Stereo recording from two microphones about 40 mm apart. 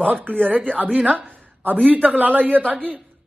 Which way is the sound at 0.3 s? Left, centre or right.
Right.